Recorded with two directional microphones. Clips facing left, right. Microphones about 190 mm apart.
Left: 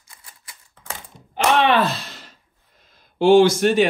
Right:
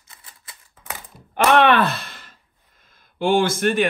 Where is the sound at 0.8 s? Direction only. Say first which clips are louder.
Even; 5° right (ahead or behind).